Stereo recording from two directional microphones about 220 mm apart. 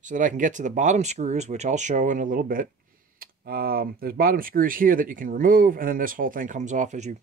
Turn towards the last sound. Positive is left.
turn(degrees=-35)  # may be behind; listen again after turning